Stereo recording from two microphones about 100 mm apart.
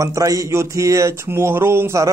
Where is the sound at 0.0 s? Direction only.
35° right (ahead or behind).